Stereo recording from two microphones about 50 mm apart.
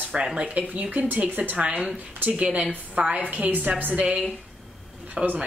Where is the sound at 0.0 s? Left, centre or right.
Right.